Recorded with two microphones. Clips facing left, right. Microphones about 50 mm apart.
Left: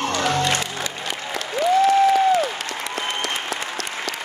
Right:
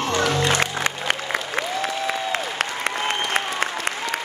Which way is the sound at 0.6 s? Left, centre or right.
Right.